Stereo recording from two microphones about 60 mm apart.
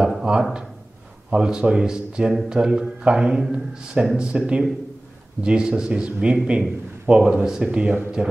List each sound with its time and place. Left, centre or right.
0.0 s a man's voice: centre